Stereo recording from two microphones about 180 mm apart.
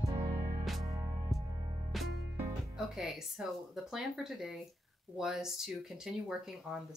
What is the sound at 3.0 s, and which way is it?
Speech, centre (ahead or behind).